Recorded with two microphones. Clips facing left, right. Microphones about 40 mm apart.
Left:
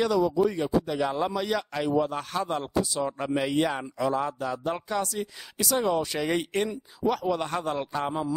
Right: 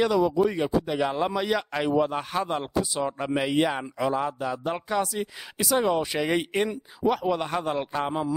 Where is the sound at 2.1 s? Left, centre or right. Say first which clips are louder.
Right 2 dB; centre.